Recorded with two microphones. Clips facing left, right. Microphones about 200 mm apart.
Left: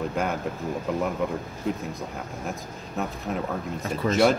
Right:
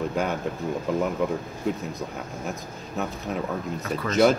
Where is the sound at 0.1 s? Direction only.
Centre (ahead or behind).